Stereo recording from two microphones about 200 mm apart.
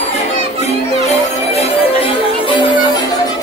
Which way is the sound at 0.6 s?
35° left (ahead or behind).